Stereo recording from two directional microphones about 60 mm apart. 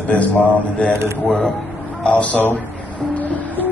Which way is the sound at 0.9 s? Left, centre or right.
Right.